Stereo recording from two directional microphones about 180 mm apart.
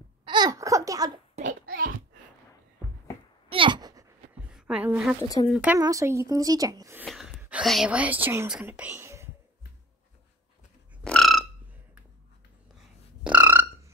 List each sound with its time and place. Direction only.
0.2 s babbling: 25° right (ahead or behind)
1.3 s a sound: 50° right (ahead or behind)
3.4 s a sound: 30° right (ahead or behind)
4.5 s a woman's voice: 5° right (ahead or behind)
5.8 s speech: 20° right (ahead or behind)
7.1 s speech: centre (ahead or behind)
11.1 s frog: centre (ahead or behind)
13.2 s burping: 10° right (ahead or behind)